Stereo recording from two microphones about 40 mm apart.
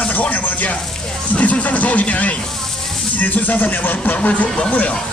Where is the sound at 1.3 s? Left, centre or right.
Left.